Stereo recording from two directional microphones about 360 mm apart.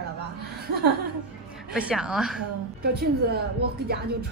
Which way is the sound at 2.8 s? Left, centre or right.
Right.